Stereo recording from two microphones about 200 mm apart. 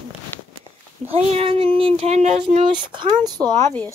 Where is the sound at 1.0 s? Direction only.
30° right (ahead or behind).